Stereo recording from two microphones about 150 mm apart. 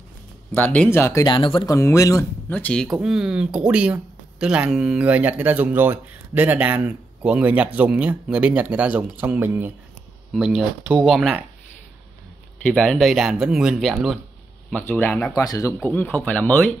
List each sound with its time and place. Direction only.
0.5 s speech: 10° left (ahead or behind)
1.2 s speech: 35° left (ahead or behind)
1.7 s speech: 20° left (ahead or behind)
2.5 s speech: 10° left (ahead or behind); by 9.7 s 15° right (ahead or behind)
10.3 s speech: centre (ahead or behind)
12.6 s speech: 5° left (ahead or behind)
15.3 s speech: 20° left (ahead or behind)
15.9 s speech: 10° left (ahead or behind)